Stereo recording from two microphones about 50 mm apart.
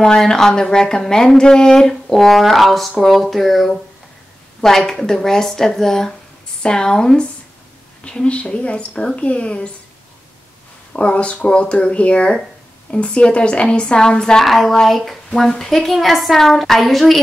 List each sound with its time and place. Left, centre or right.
0.0 s a woman's voice: centre
11.0 s a woman's voice: left
14.4 s a woman's voice: centre